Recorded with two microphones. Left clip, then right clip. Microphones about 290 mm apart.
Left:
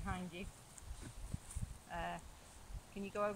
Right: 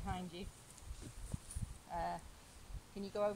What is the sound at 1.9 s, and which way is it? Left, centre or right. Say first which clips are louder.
Speech: right 3 dB; right.